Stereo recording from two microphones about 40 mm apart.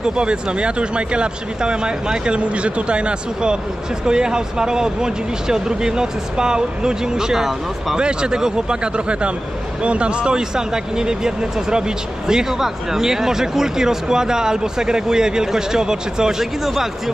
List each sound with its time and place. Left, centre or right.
0.0 s speech: right; by 16.9 s centre